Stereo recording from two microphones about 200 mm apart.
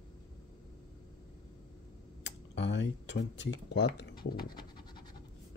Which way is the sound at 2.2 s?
60° left (ahead or behind).